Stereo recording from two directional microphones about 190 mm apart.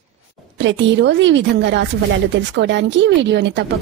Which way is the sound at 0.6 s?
75° right (ahead or behind).